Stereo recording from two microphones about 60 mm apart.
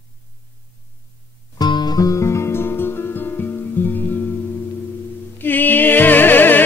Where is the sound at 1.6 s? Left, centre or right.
Left.